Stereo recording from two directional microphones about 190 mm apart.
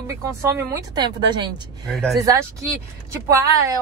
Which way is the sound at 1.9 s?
Centre (ahead or behind).